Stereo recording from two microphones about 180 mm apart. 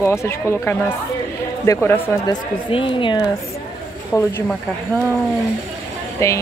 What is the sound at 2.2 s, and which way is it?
Speech, 30° left (ahead or behind).